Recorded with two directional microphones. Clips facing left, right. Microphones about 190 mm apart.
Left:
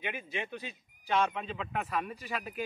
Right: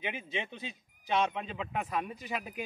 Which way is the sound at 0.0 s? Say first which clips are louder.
Even; 20° right (ahead or behind).